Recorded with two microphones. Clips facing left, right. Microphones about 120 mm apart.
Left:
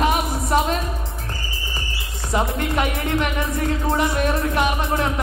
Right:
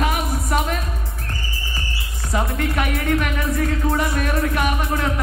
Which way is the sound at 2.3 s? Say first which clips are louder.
Left 1 dB; 20° left (ahead or behind).